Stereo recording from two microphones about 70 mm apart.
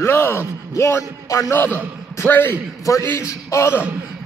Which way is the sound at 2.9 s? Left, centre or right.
Left.